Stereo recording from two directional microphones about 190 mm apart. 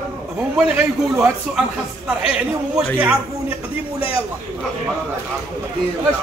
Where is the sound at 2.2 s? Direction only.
5° right (ahead or behind).